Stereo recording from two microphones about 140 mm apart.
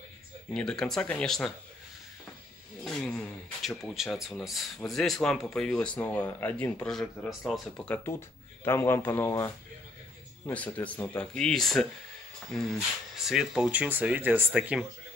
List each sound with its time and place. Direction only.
0.6 s speech: 5° left (ahead or behind)
2.8 s speech: 5° left (ahead or behind)
6.9 s speech: centre (ahead or behind)
7.7 s speech: 10° left (ahead or behind)
10.5 s speech: 10° left (ahead or behind); by 14.9 s 10° right (ahead or behind)